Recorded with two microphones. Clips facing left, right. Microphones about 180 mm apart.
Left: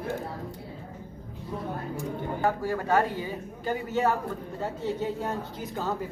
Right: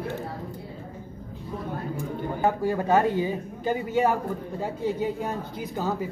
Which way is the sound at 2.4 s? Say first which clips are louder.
Right 4 dB; 20° right (ahead or behind).